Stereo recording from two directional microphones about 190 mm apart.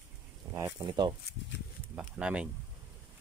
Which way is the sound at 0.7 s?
25° right (ahead or behind).